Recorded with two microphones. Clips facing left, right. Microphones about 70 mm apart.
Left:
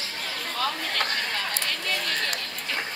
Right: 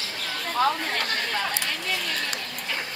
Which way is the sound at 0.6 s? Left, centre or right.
Right.